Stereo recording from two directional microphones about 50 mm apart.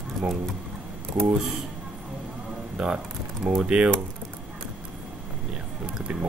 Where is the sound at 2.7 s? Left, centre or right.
Centre.